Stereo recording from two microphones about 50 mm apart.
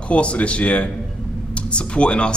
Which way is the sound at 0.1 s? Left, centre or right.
Left.